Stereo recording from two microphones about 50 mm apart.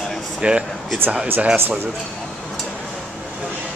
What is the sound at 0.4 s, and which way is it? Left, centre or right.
Speech, centre.